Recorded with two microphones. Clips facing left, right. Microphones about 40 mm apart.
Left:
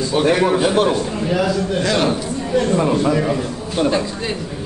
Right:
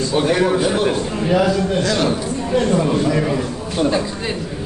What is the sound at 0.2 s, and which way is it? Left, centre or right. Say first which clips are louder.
Speech: left 2 dB; centre.